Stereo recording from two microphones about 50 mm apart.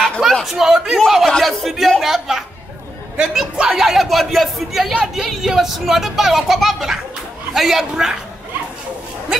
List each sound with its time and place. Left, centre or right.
0.3 s a sound: centre
0.6 s speech: centre
3.2 s a man's voice: centre
3.7 s a man's voice: centre